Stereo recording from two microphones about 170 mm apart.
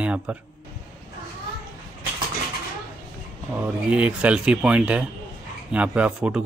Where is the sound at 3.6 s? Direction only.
5° right (ahead or behind).